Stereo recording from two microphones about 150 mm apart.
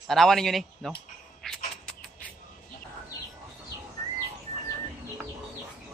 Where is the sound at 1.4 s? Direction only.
5° left (ahead or behind).